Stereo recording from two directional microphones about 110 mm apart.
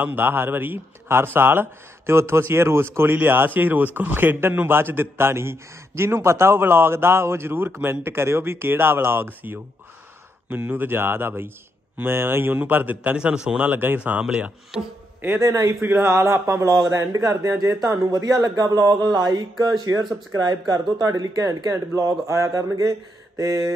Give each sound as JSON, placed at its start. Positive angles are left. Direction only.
{"t": 0.0, "sound": "a man's voice", "side_deg": -20}
{"t": 15.2, "sound": "speech", "side_deg": -25}